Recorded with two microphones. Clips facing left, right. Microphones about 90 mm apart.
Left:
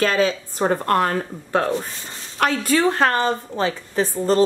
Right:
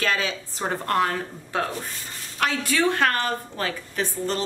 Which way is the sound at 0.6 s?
50° left (ahead or behind).